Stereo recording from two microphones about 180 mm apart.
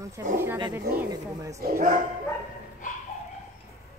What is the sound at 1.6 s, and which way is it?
Speech, 50° right (ahead or behind).